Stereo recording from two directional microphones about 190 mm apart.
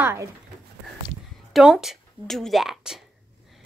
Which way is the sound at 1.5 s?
Centre (ahead or behind).